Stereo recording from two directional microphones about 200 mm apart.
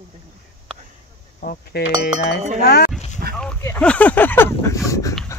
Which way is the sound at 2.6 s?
50° left (ahead or behind).